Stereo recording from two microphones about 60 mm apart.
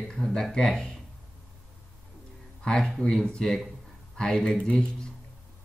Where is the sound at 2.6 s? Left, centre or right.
Centre.